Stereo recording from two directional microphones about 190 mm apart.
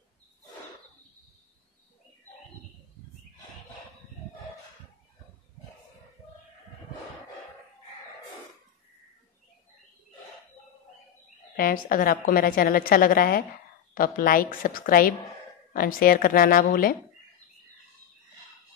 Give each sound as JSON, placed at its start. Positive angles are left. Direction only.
{"t": 11.5, "sound": "a woman's voice", "side_deg": 50}